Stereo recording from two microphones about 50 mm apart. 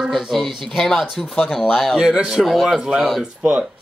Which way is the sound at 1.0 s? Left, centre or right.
Centre.